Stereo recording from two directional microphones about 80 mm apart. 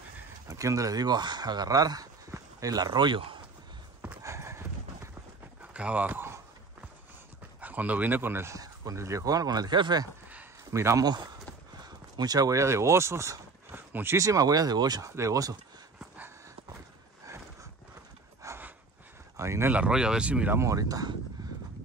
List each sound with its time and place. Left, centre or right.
0.5 s speech: right
4.2 s clip-clop: right
5.6 s speech: centre
7.6 s speech: centre
8.5 s speech: right
10.6 s speech: right
11.8 s speech: right
14.1 s speech: right
15.0 s speech: right
18.4 s a sound: right
19.7 s speech: centre
20.5 s speech: right
21.4 s horse: right